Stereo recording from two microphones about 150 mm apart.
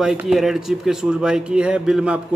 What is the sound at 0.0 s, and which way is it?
Speech, 5° right (ahead or behind).